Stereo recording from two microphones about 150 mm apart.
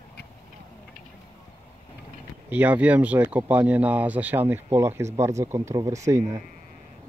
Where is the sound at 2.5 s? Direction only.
10° right (ahead or behind).